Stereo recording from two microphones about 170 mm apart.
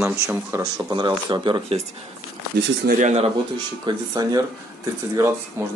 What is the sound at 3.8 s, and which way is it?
Speech, 25° right (ahead or behind).